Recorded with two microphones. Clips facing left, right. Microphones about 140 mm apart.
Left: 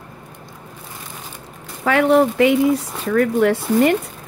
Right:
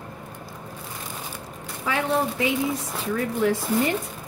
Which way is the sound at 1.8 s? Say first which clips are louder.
Left 10 dB; 70° left (ahead or behind).